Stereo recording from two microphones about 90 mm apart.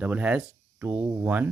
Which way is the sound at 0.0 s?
15° right (ahead or behind).